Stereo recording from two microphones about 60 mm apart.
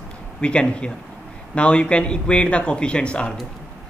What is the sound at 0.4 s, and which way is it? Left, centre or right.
Speech, centre.